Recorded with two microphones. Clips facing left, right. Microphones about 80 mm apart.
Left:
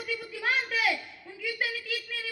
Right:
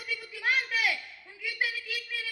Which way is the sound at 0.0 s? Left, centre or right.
Left.